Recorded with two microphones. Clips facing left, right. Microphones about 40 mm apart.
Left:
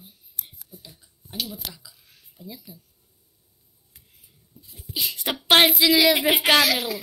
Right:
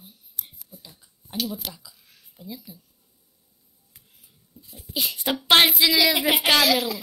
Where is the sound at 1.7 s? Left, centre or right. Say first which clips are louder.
Right 2 dB; centre.